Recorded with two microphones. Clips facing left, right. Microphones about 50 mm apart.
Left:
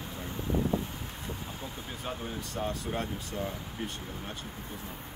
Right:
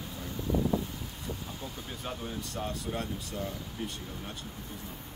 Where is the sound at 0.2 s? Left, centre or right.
Left.